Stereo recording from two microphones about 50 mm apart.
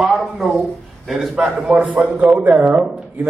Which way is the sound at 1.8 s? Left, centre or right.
Right.